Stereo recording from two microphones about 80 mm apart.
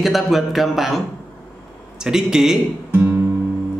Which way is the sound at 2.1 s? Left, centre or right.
Centre.